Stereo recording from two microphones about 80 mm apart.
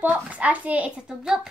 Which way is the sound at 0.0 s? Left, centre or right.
Centre.